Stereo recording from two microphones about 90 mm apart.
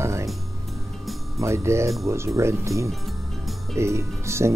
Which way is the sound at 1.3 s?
30° right (ahead or behind).